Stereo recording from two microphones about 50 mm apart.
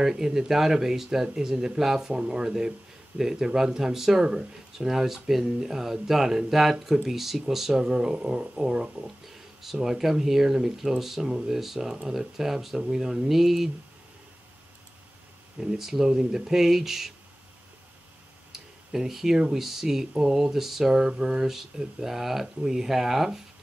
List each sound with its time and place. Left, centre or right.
0.0 s speech: centre
15.6 s speech: centre
18.5 s a sound: centre
19.5 s speech: centre